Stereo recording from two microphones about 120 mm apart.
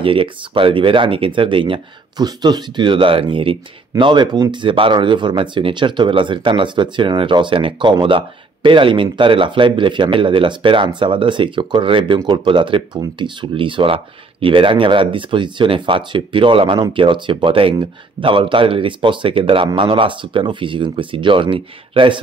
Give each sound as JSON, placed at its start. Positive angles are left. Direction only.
{"t": 0.0, "sound": "speech", "side_deg": -45}